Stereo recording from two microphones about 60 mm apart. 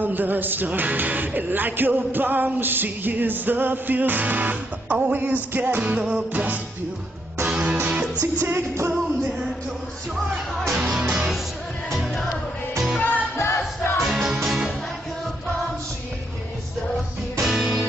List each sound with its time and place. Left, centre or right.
0.0 s speech: right
5.8 s music: right
8.4 s speech: right
8.9 s music: centre
10.7 s music: centre
11.9 s music: centre
13.4 s music: left
14.0 s music: centre
17.4 s music: centre